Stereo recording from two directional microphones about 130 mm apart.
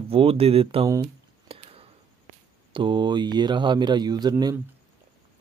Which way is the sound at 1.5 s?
45° right (ahead or behind).